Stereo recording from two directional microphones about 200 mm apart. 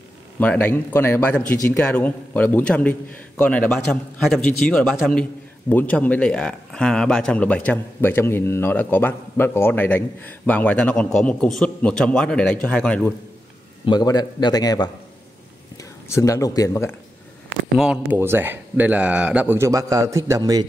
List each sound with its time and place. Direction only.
0.4 s a man's voice: 10° left (ahead or behind)
13.8 s a man's voice: 20° left (ahead or behind)
17.7 s speech: 5° right (ahead or behind)